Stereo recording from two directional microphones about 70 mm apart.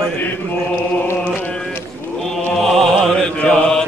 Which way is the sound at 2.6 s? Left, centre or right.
Centre.